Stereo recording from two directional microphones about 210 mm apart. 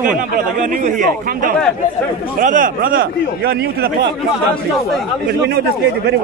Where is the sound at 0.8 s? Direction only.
40° right (ahead or behind).